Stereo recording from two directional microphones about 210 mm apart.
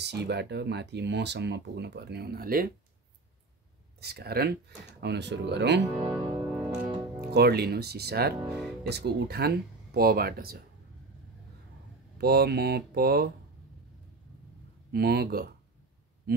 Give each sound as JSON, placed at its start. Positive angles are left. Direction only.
{"t": 0.0, "sound": "speech", "side_deg": -55}
{"t": 4.0, "sound": "speech", "side_deg": -50}
{"t": 5.9, "sound": "speech", "side_deg": -20}
{"t": 7.3, "sound": "speech", "side_deg": -50}
{"t": 8.4, "sound": "speech", "side_deg": 0}
{"t": 8.8, "sound": "speech", "side_deg": -50}
{"t": 12.2, "sound": "speech", "side_deg": -50}
{"t": 14.9, "sound": "speech", "side_deg": -50}